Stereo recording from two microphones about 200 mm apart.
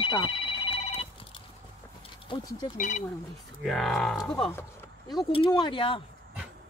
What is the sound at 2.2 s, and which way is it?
Speech, 20° left (ahead or behind).